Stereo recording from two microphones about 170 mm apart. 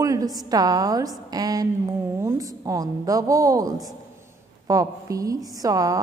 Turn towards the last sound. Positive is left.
turn(degrees=-20)  # may be behind; listen again after turning